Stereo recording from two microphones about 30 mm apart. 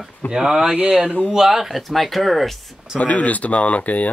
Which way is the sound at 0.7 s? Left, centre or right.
Right.